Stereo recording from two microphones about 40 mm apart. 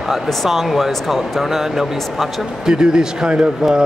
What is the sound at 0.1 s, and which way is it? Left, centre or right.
A man's voice, centre.